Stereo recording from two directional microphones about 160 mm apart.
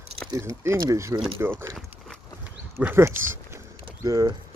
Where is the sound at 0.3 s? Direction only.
20° right (ahead or behind).